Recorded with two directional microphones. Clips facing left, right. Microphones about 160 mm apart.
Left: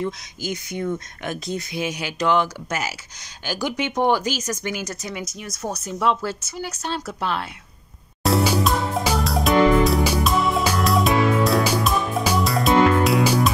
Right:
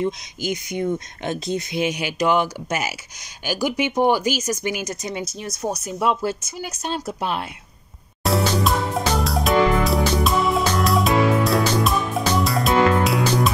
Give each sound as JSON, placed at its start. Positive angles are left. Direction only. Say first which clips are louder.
{"t": 0.0, "sound": "speech", "louder": "right 3 dB", "side_deg": -15}
{"t": 5.6, "sound": "speech", "louder": "right 1 dB", "side_deg": -10}
{"t": 8.2, "sound": "music", "louder": "left 1 dB", "side_deg": 0}